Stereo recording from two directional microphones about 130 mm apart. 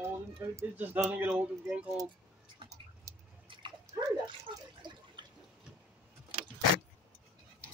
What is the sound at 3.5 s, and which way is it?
Dog, 40° right (ahead or behind).